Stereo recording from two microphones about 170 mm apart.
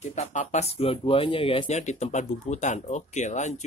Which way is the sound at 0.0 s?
45° left (ahead or behind).